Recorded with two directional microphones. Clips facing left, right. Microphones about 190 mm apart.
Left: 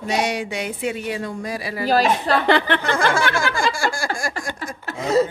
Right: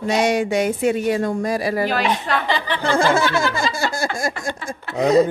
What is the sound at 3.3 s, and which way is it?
Speech, 20° right (ahead or behind).